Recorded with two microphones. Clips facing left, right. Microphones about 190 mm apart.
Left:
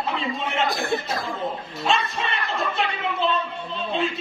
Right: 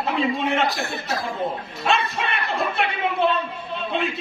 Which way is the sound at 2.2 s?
65° right (ahead or behind).